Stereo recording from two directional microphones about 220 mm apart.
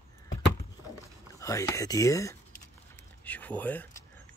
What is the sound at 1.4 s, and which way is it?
Speech, 15° left (ahead or behind).